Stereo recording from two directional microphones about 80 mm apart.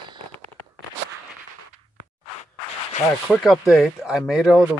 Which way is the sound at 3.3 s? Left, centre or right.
Centre.